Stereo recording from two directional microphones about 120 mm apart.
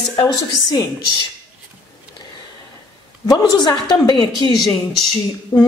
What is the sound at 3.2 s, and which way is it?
Speech, 30° left (ahead or behind).